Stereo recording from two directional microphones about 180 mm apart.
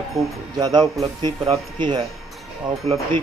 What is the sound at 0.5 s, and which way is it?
Speech, 20° right (ahead or behind).